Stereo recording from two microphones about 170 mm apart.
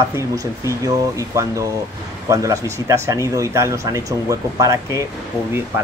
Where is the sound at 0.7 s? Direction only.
20° right (ahead or behind).